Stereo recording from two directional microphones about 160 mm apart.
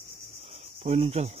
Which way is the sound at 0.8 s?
40° right (ahead or behind).